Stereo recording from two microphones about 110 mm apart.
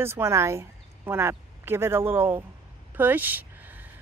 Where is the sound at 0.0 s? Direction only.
25° right (ahead or behind).